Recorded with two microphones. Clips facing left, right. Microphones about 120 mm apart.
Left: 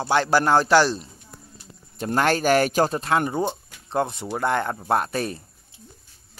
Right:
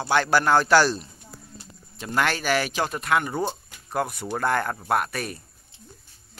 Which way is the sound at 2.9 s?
30° left (ahead or behind).